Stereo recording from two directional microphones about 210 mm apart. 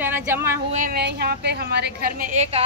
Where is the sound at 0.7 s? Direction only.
45° right (ahead or behind).